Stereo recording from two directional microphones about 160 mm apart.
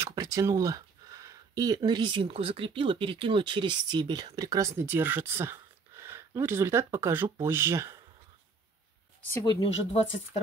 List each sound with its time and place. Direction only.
0.0 s speech: 20° right (ahead or behind)
9.4 s speech: 30° left (ahead or behind)